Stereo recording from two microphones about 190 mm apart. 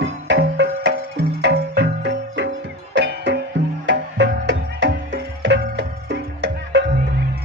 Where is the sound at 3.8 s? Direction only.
65° right (ahead or behind).